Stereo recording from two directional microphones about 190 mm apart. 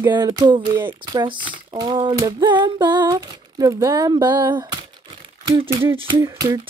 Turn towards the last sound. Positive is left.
turn(degrees=-20)  # may be behind; listen again after turning